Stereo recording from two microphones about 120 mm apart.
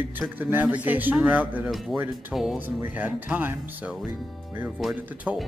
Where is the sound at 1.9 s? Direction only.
Centre (ahead or behind).